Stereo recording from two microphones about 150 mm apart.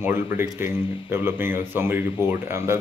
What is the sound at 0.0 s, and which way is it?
Speech, 15° right (ahead or behind).